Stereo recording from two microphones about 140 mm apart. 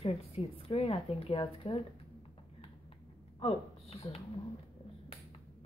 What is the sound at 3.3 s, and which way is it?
Speech, 40° left (ahead or behind).